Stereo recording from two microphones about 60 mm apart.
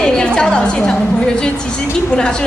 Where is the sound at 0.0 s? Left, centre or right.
Centre.